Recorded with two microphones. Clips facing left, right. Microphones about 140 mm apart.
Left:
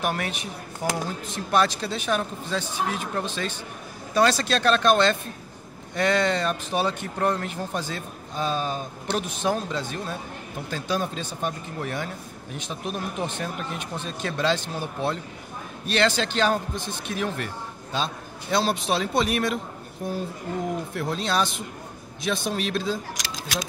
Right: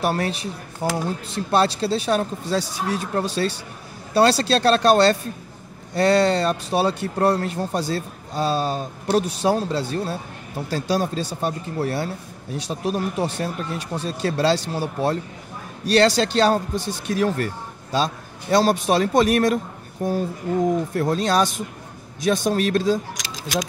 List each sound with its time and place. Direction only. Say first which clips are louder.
0.0 s a man's voice: right 5 dB; 35° right (ahead or behind)